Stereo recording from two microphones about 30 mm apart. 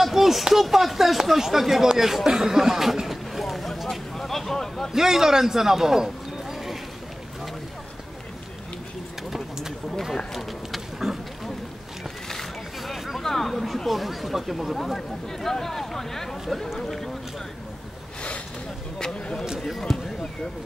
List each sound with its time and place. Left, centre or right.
0.0 s speech: centre
2.2 s a sound: centre
4.6 s a sound: centre
4.9 s speech: centre
11.0 s wild animals: centre
12.8 s a sound: centre
13.2 s speech: centre
13.8 s speech: centre
14.8 s speech: centre
19.9 s speech: centre